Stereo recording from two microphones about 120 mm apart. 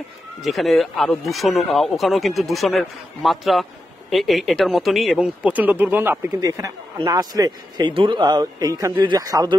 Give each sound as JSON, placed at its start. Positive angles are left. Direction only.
{"t": 0.4, "sound": "speech", "side_deg": 0}
{"t": 5.4, "sound": "speech", "side_deg": -15}
{"t": 6.4, "sound": "speech", "side_deg": -30}
{"t": 7.9, "sound": "speech", "side_deg": -45}